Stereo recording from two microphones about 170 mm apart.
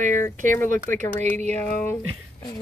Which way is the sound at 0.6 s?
50° right (ahead or behind).